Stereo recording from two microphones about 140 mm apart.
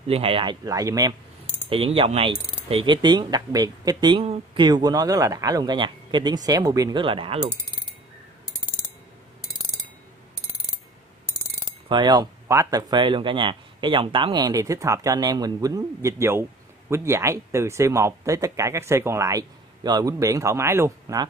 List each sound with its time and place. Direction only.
0.0 s speech: 45° right (ahead or behind); by 1.1 s 25° right (ahead or behind)
1.7 s speech: 40° right (ahead or behind); by 7.0 s 25° right (ahead or behind)
7.0 s speech: 40° right (ahead or behind)
11.9 s speech: 30° right (ahead or behind)